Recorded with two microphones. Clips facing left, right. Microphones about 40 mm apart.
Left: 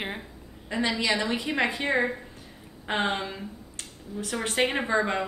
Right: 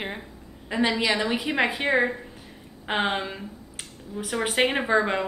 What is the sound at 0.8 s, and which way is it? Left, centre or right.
A woman's voice, centre.